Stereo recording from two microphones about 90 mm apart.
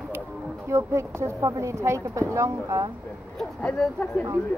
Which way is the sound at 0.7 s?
30° right (ahead or behind).